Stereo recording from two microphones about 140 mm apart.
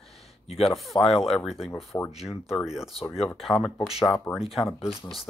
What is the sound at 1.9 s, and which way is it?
Speech, 20° left (ahead or behind).